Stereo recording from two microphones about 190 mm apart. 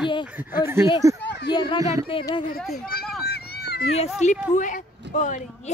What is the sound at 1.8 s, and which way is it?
Speech, 15° right (ahead or behind).